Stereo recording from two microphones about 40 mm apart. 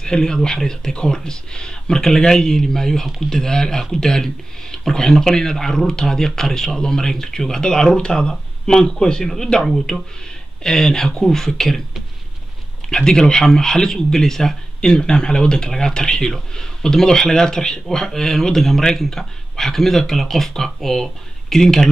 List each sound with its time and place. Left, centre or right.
0.0 s speech: centre
12.9 s speech: centre